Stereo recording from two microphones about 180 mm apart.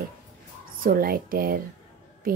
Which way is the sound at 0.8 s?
55° right (ahead or behind).